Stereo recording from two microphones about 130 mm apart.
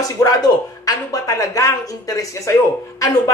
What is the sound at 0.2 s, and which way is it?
Speech, 25° left (ahead or behind).